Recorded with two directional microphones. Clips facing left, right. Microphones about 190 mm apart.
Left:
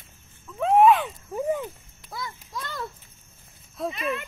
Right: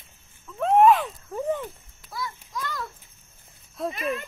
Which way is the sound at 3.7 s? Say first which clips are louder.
Even; centre (ahead or behind).